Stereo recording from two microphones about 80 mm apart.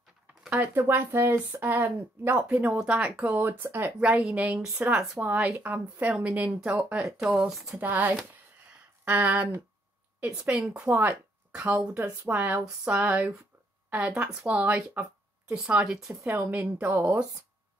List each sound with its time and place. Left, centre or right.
0.5 s a woman's voice: right
4.2 s a woman's voice: centre
7.8 s a woman's voice: right
15.5 s a woman's voice: centre
16.3 s speech: right